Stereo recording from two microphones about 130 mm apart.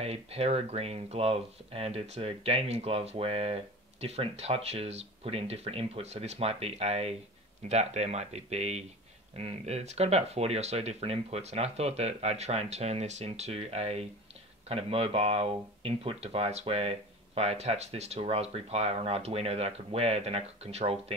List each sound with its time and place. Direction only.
0.0 s speech: 50° right (ahead or behind)